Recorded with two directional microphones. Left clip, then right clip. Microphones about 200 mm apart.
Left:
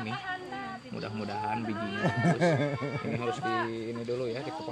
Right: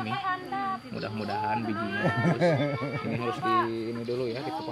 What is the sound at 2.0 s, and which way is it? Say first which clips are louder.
Speech: right 2 dB; 45° left (ahead or behind).